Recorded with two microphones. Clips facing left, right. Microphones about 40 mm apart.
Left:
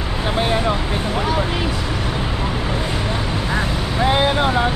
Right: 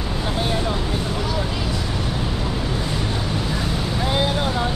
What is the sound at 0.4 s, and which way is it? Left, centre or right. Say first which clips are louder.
Vehicle: left 5 dB; left.